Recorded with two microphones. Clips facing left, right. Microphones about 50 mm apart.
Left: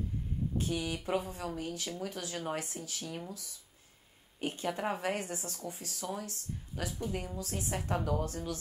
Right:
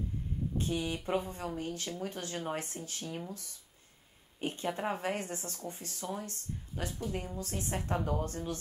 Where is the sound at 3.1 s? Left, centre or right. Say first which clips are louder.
Right 2 dB; centre.